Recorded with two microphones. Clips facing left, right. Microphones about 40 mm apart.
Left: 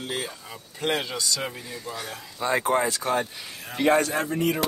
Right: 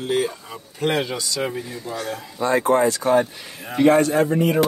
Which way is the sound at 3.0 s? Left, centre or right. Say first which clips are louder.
Right 8 dB; centre.